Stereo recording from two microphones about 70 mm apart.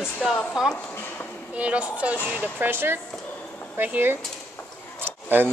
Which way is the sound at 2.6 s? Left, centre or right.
Right.